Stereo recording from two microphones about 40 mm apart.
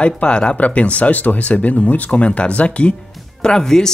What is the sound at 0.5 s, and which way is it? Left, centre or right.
Speech, left.